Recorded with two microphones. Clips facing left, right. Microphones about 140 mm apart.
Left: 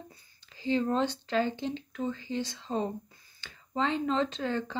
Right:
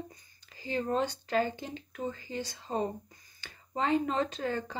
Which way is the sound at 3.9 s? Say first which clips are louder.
Right 2 dB; 50° right (ahead or behind).